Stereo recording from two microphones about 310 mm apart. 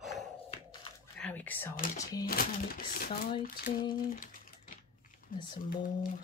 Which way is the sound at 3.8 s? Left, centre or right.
Left.